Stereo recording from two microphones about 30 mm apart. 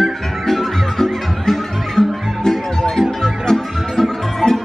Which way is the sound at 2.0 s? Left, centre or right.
Left.